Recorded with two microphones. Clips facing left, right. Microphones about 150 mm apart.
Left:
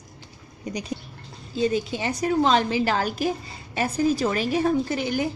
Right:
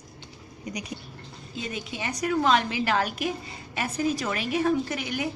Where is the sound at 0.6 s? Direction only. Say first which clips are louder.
Left 4 dB; 30° left (ahead or behind).